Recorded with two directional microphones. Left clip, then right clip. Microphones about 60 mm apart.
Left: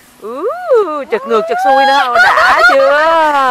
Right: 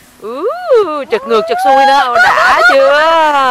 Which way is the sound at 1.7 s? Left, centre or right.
Left.